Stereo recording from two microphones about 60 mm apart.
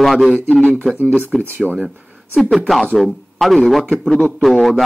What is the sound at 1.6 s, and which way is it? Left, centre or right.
Speech, right.